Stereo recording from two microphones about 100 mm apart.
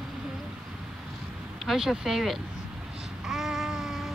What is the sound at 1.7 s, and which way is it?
Speech, 5° right (ahead or behind).